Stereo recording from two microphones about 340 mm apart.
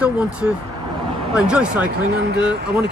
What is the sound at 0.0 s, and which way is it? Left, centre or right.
Speech, centre.